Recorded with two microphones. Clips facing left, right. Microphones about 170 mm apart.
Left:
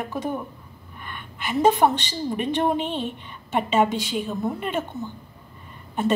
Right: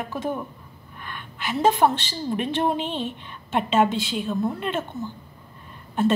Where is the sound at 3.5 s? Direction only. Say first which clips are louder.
Even; 10° left (ahead or behind).